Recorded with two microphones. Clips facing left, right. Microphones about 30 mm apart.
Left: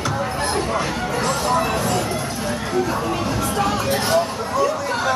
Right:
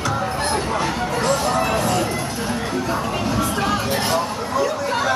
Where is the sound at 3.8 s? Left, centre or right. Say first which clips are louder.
Left 2 dB; centre.